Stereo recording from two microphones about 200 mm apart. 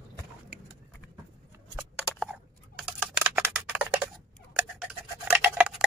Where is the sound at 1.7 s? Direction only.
Centre (ahead or behind).